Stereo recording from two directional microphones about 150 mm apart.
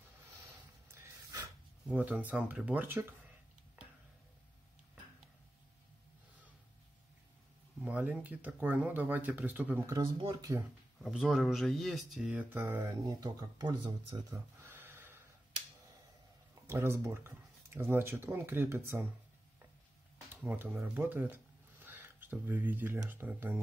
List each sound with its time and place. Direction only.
1.9 s speech: 10° right (ahead or behind)
7.8 s speech: 10° right (ahead or behind)
11.0 s speech: centre (ahead or behind); by 14.2 s 30° right (ahead or behind)
14.3 s gasp: 15° right (ahead or behind)
16.6 s speech: 15° right (ahead or behind)
20.3 s speech: 10° right (ahead or behind)
21.8 s a sound: 15° right (ahead or behind)
23.0 s speech: 10° right (ahead or behind)